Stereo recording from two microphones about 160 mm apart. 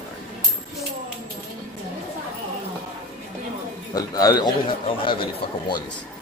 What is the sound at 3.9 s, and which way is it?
A man's voice, 25° left (ahead or behind).